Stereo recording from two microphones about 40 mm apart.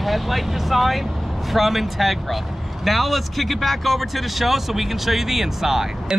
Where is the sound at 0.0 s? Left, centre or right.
Centre.